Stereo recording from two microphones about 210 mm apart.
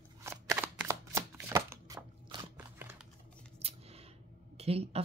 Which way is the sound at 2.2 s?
25° right (ahead or behind).